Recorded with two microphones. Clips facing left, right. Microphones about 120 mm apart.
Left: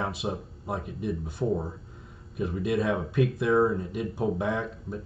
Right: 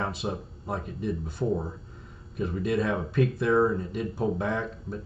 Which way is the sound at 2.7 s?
20° left (ahead or behind).